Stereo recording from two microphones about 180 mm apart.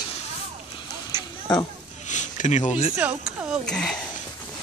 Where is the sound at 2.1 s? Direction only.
40° left (ahead or behind).